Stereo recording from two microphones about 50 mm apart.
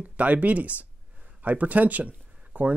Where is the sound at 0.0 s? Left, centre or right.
Right.